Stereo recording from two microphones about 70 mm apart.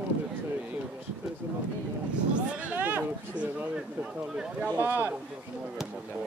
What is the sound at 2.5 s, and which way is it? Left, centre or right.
Chatter, right.